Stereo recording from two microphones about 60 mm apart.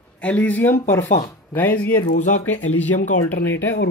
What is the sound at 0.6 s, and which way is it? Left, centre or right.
Speech, left.